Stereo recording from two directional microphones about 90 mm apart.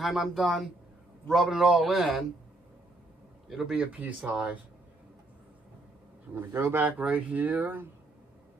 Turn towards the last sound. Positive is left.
turn(degrees=-20)  # may be behind; listen again after turning